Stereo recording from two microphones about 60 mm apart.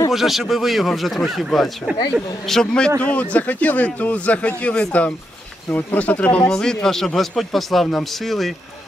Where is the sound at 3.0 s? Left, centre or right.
Left.